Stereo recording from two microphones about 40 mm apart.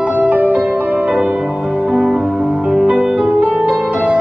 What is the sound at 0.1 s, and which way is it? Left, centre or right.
Music, right.